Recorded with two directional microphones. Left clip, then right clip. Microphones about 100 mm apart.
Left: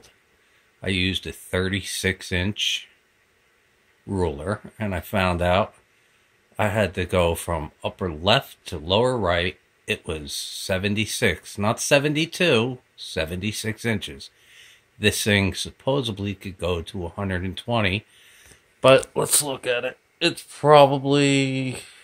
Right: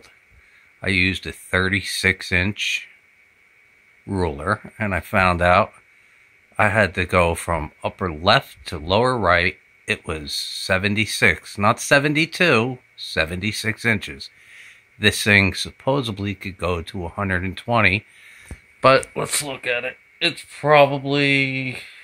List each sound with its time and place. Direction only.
0.7 s speech: 10° right (ahead or behind)
4.1 s speech: 10° right (ahead or behind)
19.2 s speech: 60° left (ahead or behind); by 21.7 s 90° left